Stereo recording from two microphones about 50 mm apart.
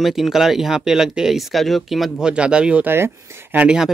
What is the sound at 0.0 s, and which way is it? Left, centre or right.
Speech, centre.